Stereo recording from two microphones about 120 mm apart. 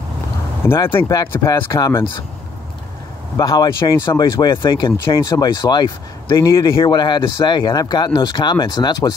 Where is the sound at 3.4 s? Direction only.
35° left (ahead or behind).